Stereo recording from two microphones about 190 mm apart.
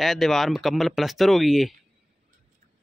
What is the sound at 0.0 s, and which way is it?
Speech, centre (ahead or behind).